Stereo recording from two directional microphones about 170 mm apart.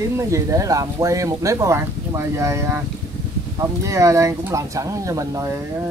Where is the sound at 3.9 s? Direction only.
20° right (ahead or behind).